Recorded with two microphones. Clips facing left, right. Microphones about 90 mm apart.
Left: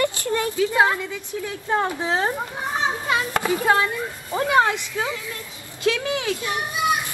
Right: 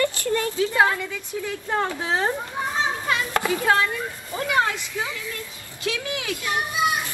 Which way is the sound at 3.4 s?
20° left (ahead or behind).